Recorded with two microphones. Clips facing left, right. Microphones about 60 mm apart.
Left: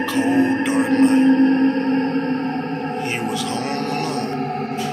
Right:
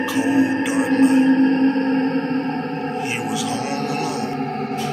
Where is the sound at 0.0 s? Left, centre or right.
Centre.